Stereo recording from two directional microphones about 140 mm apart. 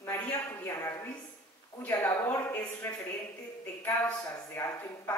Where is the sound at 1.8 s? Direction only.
15° left (ahead or behind).